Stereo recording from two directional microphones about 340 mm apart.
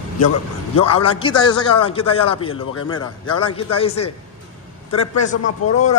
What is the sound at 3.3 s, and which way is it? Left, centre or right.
Speech, centre.